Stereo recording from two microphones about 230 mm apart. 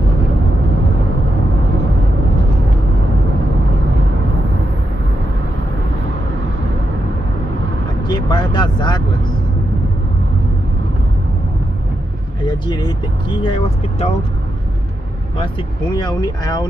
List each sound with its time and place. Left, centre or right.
8.1 s vehicle: centre
12.4 s speech: centre
15.3 s speech: centre